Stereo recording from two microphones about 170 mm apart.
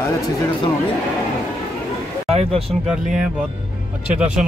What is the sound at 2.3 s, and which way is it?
Speech, 35° right (ahead or behind).